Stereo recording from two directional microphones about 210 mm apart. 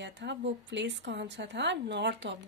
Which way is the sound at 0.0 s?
55° right (ahead or behind).